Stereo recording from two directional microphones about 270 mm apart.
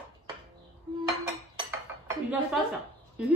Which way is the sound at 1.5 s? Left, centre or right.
Centre.